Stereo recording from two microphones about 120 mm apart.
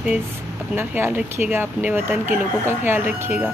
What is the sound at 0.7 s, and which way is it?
Speech, 15° right (ahead or behind).